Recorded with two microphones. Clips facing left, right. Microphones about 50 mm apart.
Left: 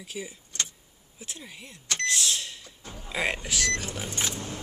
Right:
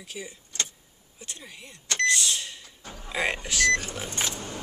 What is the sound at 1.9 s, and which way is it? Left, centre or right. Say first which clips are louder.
Speech: right 4 dB; centre.